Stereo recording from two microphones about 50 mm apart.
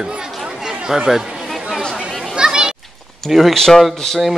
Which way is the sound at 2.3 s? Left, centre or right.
Centre.